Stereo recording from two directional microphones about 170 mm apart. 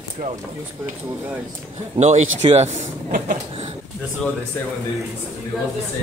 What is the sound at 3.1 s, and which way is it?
Speech, 55° right (ahead or behind).